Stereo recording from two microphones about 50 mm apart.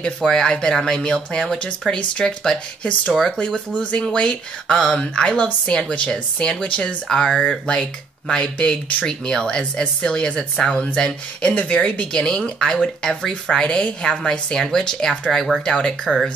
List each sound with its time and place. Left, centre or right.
0.0 s speech: centre
3.1 s speech: centre
3.3 s speech: centre
7.1 s speech: centre
7.4 s speech: left